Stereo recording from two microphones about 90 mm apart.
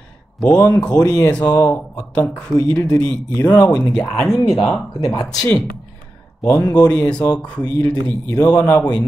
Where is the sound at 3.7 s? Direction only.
10° left (ahead or behind).